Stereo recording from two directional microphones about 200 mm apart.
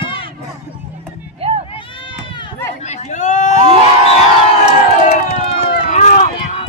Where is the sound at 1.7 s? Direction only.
25° left (ahead or behind).